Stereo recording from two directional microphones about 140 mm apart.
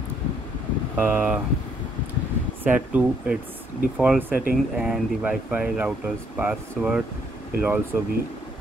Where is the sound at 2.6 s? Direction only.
10° right (ahead or behind).